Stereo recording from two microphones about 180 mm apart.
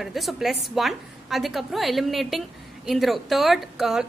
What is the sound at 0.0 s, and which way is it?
A woman's voice, centre (ahead or behind).